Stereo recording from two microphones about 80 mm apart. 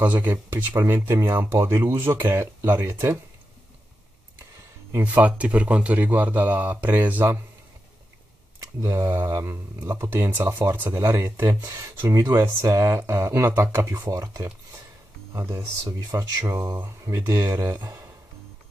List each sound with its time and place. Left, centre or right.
0.0 s speech: right
5.0 s speech: centre
9.0 s mantra: right
9.4 s speech: right
14.1 s mantra: right
15.3 s speech: right